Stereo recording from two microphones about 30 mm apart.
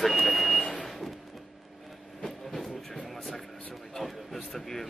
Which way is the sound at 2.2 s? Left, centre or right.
Centre.